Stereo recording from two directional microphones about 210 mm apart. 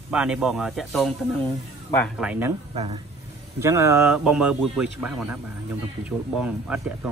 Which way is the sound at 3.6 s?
15° right (ahead or behind).